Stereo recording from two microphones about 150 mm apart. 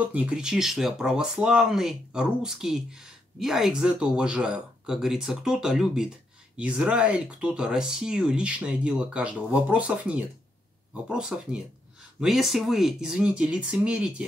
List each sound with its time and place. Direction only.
0.0 s speech: 10° right (ahead or behind)